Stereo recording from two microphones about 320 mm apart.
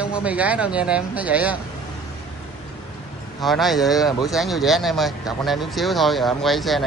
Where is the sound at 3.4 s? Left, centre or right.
Centre.